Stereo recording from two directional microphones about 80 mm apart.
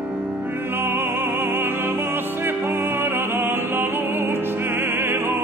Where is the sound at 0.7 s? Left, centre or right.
Right.